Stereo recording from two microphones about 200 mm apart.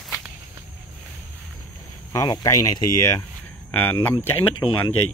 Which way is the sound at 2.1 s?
20° left (ahead or behind).